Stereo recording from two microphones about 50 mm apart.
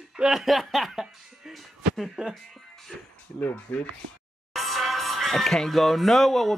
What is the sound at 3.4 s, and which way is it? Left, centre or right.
Speech, left.